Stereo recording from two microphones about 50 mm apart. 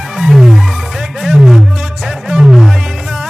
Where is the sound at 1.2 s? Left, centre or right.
Centre.